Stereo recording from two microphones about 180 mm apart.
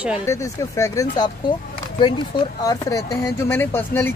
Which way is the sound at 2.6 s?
20° left (ahead or behind).